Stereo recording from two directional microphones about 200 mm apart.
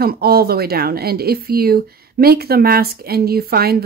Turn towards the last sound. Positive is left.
turn(degrees=-50)  # may be behind; listen again after turning